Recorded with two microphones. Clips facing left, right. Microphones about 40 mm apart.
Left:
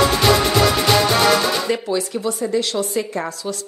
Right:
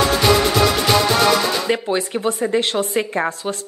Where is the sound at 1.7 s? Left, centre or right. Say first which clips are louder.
Right 1 dB; right.